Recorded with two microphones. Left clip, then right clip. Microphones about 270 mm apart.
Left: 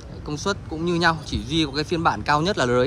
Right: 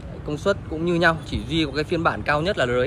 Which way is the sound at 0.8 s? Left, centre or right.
Centre.